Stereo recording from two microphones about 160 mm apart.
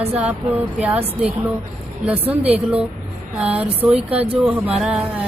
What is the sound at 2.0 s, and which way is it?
Speech, 10° right (ahead or behind).